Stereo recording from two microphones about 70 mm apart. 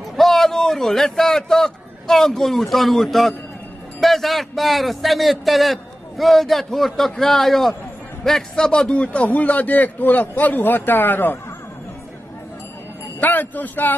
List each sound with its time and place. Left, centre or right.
0.1 s a man's voice: centre; by 11.3 s left
13.2 s a man's voice: left